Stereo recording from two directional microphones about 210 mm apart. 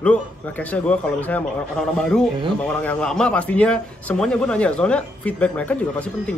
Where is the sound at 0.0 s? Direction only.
5° left (ahead or behind).